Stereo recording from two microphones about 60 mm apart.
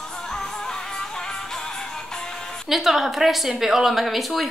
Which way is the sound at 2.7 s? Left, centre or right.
Centre.